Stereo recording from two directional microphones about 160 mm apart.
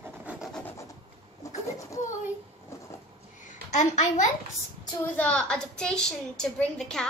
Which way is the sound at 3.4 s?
50° left (ahead or behind).